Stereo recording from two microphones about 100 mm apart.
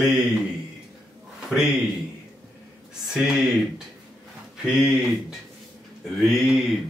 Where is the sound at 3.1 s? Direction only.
5° right (ahead or behind).